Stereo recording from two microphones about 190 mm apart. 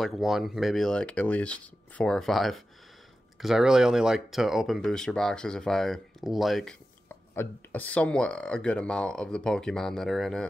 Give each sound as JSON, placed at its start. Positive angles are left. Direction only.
{"t": 0.0, "sound": "speech", "side_deg": 0}